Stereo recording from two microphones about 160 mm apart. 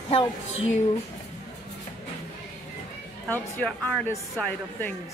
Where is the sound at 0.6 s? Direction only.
45° left (ahead or behind).